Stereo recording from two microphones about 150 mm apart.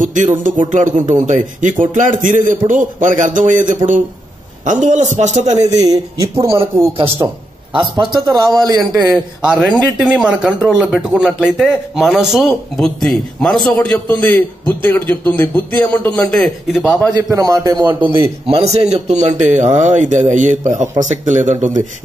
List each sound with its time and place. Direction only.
0.0 s music: 55° right (ahead or behind)
0.4 s a man's voice: 55° right (ahead or behind)
5.7 s a man's voice: 25° right (ahead or behind)
6.9 s a man's voice: 40° right (ahead or behind)
9.1 s a man's voice: 5° right (ahead or behind)
17.3 s a man's voice: 25° right (ahead or behind)
18.5 s a man's voice: 45° right (ahead or behind)